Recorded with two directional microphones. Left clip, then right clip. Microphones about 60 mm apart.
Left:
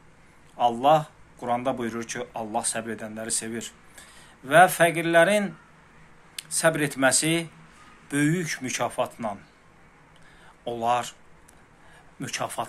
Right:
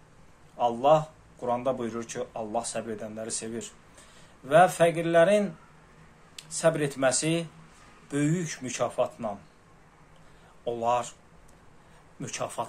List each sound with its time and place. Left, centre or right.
0.6 s speech: centre
10.6 s speech: centre
12.2 s speech: centre